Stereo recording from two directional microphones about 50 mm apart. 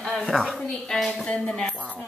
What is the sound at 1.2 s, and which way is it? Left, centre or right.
Speech, centre.